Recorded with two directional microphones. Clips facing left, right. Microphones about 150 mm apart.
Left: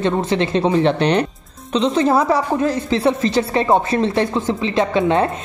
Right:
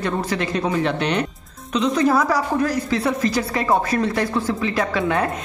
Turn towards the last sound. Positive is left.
turn(degrees=25)  # may be behind; listen again after turning